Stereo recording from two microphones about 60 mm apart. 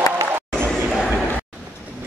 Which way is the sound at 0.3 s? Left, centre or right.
Right.